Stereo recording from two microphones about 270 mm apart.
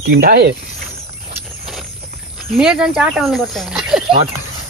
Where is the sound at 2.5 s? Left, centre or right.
Centre.